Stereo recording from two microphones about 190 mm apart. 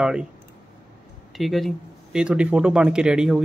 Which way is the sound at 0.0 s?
5° right (ahead or behind).